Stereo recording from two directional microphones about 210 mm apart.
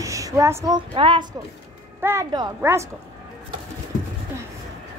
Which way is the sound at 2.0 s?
10° right (ahead or behind).